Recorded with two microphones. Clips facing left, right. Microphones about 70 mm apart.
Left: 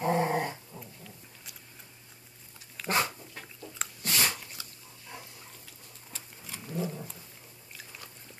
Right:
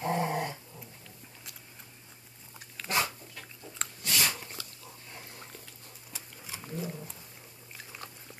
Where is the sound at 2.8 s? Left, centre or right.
Left.